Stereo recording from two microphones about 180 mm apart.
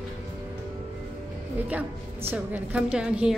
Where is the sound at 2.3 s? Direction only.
10° right (ahead or behind).